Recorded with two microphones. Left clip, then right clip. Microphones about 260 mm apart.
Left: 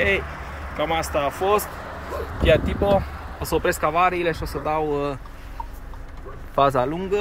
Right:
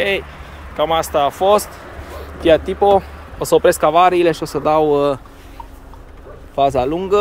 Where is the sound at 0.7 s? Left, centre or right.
Centre.